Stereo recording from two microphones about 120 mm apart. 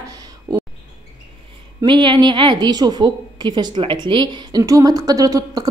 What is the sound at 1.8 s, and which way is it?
A woman's voice, 40° right (ahead or behind).